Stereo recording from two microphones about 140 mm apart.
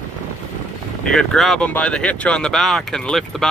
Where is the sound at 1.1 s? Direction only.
5° left (ahead or behind).